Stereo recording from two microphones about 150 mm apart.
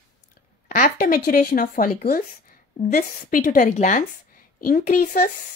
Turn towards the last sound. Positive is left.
turn(degrees=65)  # may be behind; listen again after turning